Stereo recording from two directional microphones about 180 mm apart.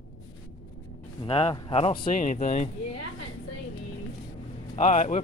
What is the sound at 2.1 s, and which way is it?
Speech, 45° left (ahead or behind).